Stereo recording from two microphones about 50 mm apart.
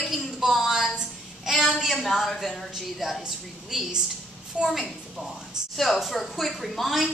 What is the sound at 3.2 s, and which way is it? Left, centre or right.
A woman's voice, centre.